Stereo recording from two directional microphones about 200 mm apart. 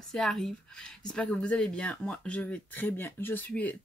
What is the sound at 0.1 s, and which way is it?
Speech, centre (ahead or behind).